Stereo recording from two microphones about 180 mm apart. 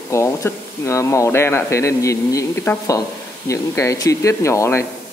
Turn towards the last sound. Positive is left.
turn(degrees=15)  # may be behind; listen again after turning